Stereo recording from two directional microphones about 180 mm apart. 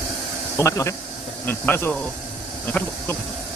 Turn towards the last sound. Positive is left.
turn(degrees=10)  # may be behind; listen again after turning